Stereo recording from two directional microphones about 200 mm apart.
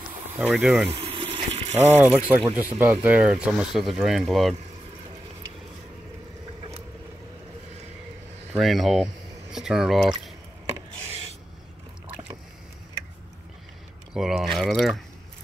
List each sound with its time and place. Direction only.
0.4 s speech: 5° right (ahead or behind)
0.8 s water: 30° right (ahead or behind)
2.1 s speech: 10° right (ahead or behind)
8.5 s speech: centre (ahead or behind)
14.1 s speech: centre (ahead or behind)